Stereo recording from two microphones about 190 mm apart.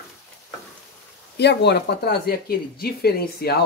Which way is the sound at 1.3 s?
60° left (ahead or behind).